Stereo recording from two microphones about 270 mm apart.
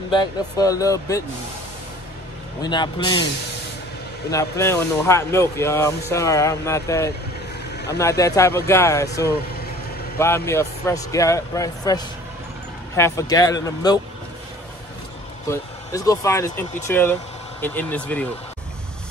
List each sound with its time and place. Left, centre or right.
0.1 s speech: centre
2.6 s speech: centre
4.3 s speech: centre
15.5 s speech: centre